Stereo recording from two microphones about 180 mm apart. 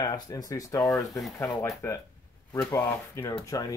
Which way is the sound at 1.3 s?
20° left (ahead or behind).